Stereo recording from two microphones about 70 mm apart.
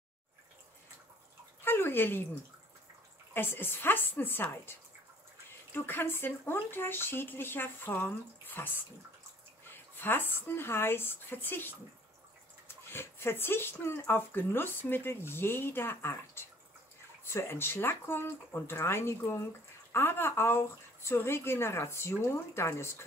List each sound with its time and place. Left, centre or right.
1.6 s a sound: left
3.3 s speech: left
9.9 s speech: left